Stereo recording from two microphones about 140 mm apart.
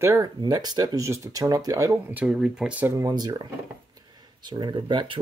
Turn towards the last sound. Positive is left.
turn(degrees=-35)  # may be behind; listen again after turning